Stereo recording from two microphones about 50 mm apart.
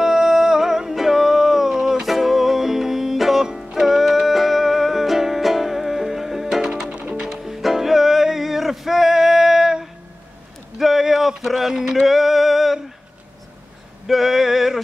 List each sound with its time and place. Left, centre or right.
0.0 s music: centre
7.2 s music: centre
10.8 s male singing: centre
14.0 s a sound: centre